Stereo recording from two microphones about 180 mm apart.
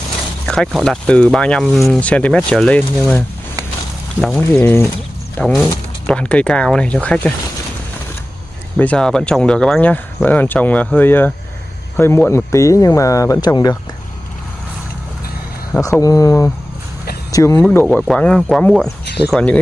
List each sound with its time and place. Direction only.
0.5 s speech: centre (ahead or behind)
8.7 s speech: 5° left (ahead or behind); by 13.7 s 20° left (ahead or behind)
15.7 s speech: 15° left (ahead or behind)